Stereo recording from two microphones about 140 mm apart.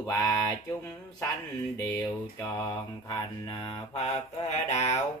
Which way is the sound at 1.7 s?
25° left (ahead or behind).